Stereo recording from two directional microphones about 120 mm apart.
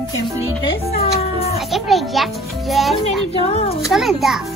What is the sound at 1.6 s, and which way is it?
A child's voice, centre (ahead or behind).